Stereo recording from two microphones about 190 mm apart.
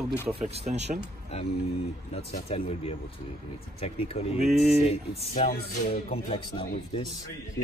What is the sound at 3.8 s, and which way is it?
Speech, 30° left (ahead or behind).